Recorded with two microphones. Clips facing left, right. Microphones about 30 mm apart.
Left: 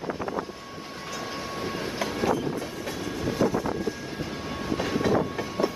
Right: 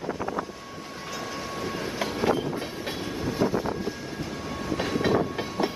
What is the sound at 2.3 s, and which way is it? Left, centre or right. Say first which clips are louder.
Train: right 1 dB; right.